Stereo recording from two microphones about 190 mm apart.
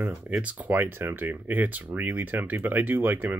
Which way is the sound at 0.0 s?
5° right (ahead or behind).